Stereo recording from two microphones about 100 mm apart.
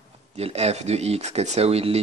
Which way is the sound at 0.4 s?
90° right.